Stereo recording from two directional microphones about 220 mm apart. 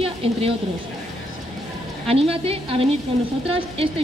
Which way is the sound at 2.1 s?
25° right (ahead or behind).